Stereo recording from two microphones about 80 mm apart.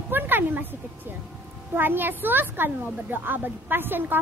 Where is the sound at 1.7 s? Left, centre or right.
Right.